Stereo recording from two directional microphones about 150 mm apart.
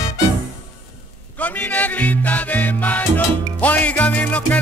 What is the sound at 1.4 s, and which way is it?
Music, 10° left (ahead or behind).